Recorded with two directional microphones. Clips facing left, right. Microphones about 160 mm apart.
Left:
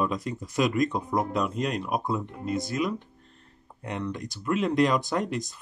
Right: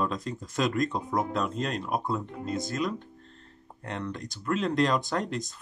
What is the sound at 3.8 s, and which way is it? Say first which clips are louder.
Speech: left 3 dB; 15° left (ahead or behind).